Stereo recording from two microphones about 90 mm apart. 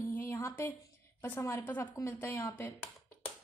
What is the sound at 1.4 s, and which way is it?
Speech, 30° left (ahead or behind).